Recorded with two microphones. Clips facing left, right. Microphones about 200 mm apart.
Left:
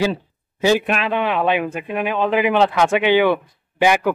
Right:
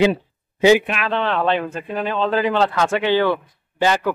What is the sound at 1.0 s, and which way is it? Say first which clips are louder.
Speech: left 1 dB; 10° left (ahead or behind).